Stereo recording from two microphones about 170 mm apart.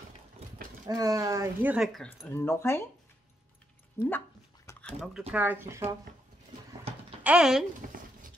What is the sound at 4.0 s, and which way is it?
Speech, 15° left (ahead or behind).